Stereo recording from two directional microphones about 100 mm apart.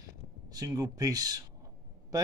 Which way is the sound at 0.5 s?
35° right (ahead or behind).